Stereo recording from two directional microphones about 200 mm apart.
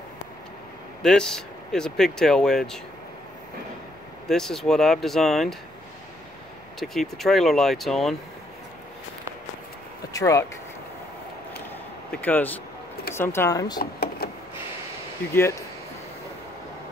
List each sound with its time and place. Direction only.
1.0 s speech: 5° left (ahead or behind)
4.3 s speech: centre (ahead or behind)
6.8 s speech: centre (ahead or behind)
10.1 s speech: 15° left (ahead or behind)
12.1 s speech: 10° left (ahead or behind)
13.7 s a sound: 50° left (ahead or behind)